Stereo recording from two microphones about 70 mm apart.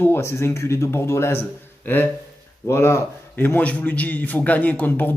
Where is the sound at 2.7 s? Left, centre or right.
Left.